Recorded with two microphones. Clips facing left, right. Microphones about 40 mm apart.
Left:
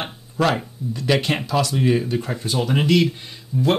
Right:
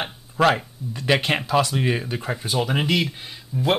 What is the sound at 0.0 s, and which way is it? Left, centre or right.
Speech, centre.